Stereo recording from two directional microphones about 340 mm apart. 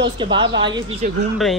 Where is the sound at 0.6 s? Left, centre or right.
Centre.